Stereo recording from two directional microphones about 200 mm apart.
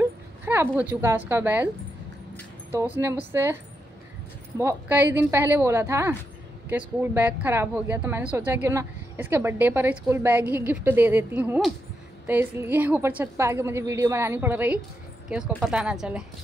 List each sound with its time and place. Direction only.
0.0 s a woman's voice: 10° right (ahead or behind)
2.7 s a woman's voice: 10° right (ahead or behind)
4.6 s a woman's voice: 10° right (ahead or behind)